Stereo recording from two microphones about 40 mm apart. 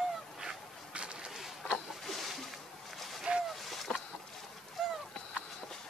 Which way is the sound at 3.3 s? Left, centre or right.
Right.